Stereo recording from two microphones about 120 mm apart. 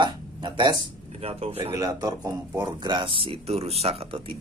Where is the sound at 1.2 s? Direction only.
55° right (ahead or behind).